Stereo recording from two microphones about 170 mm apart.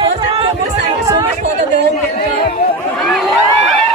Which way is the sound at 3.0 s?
Centre (ahead or behind).